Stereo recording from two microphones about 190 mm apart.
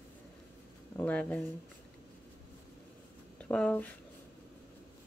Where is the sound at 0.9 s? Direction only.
5° left (ahead or behind).